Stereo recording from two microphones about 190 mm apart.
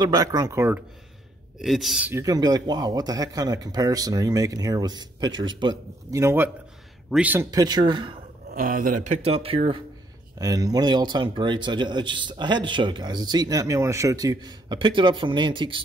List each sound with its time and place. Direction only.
0.0 s speech: 20° right (ahead or behind)
1.6 s speech: centre (ahead or behind)
7.5 s speech: 20° right (ahead or behind)
8.5 s speech: 45° right (ahead or behind); by 15.8 s 25° right (ahead or behind)